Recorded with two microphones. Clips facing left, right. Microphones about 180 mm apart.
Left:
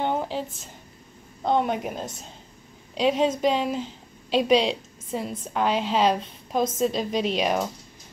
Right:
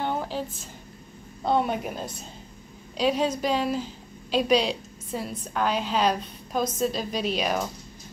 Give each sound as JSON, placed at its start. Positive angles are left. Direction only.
{"t": 0.0, "sound": "a sound", "side_deg": 20}
{"t": 1.5, "sound": "a woman's voice", "side_deg": -5}
{"t": 3.0, "sound": "a woman's voice", "side_deg": 25}